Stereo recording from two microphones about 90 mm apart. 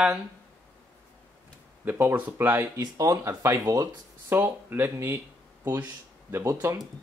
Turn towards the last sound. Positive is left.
turn(degrees=-35)  # may be behind; listen again after turning